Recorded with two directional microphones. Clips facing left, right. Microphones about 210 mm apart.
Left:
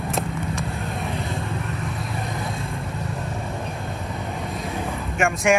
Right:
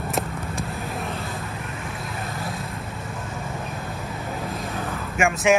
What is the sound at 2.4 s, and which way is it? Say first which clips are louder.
Vehicle: left 2 dB; centre (ahead or behind).